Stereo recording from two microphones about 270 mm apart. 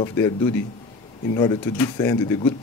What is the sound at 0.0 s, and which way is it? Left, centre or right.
Speech, centre.